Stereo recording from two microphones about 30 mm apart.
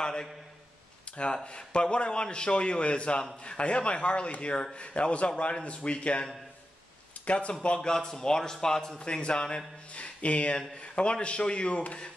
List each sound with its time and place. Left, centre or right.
0.0 s a man's voice: left
1.1 s speech: left
7.2 s speech: left
7.6 s a man's voice: left
8.9 s speech: left
9.9 s speech: left